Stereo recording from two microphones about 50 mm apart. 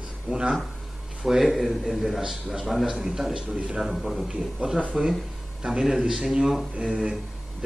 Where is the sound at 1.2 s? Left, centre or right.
Centre.